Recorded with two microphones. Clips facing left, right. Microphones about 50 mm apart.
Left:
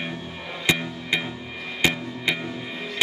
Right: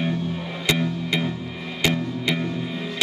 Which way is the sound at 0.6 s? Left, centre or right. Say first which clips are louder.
Right 1 dB; centre.